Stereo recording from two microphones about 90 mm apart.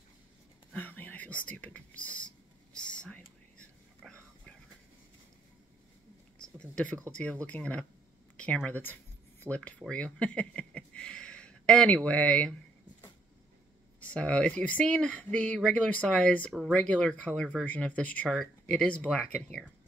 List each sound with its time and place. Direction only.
0.7 s whispering: 20° left (ahead or behind)
6.4 s a sound: 10° left (ahead or behind)
7.1 s speech: 15° left (ahead or behind)
8.4 s a sound: 15° left (ahead or behind)
9.6 s speech: 10° left (ahead or behind)
13.9 s speech: 15° left (ahead or behind)